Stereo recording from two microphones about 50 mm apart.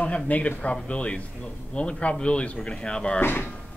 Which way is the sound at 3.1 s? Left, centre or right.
Left.